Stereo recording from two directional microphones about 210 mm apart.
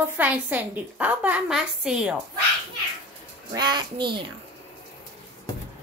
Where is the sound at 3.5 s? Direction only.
20° right (ahead or behind).